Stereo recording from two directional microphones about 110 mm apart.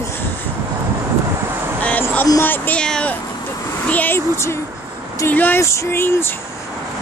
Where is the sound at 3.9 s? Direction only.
15° left (ahead or behind).